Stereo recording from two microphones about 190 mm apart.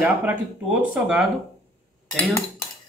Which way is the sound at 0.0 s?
10° right (ahead or behind).